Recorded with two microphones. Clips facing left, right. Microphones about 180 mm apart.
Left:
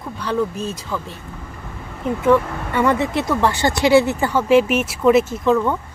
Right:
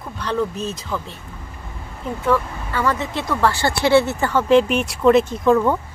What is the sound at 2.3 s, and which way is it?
Speech, 25° left (ahead or behind).